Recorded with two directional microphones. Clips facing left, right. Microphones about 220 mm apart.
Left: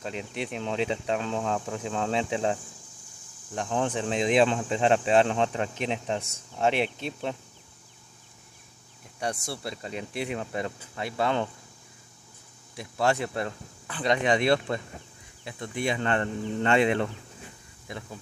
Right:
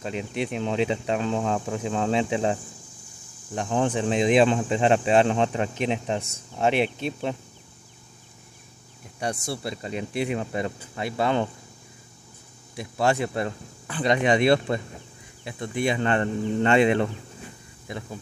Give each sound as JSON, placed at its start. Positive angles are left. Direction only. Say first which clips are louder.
{"t": 0.0, "sound": "speech", "louder": "right 5 dB", "side_deg": -5}
{"t": 9.2, "sound": "speech", "louder": "right 3 dB", "side_deg": -5}
{"t": 12.7, "sound": "speech", "louder": "right 2 dB", "side_deg": -10}